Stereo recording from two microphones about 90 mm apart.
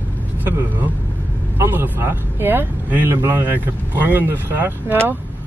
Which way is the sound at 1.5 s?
25° right (ahead or behind).